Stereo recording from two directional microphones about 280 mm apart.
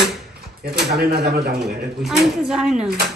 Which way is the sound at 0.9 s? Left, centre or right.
Right.